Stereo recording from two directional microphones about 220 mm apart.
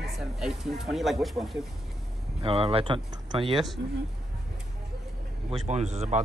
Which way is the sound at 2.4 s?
25° right (ahead or behind).